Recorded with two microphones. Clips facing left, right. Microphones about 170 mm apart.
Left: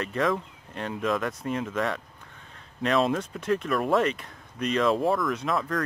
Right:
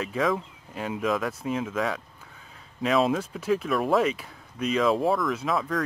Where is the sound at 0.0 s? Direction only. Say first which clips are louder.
Even; centre (ahead or behind).